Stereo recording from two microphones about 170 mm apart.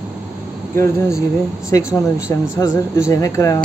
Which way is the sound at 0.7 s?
15° left (ahead or behind).